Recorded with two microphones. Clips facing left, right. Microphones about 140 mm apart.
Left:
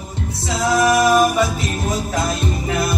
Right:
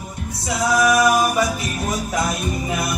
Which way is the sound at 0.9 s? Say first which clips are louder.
Left 4 dB; 25° left (ahead or behind).